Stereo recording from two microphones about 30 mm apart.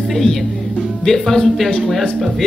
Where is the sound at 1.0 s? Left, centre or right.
Centre.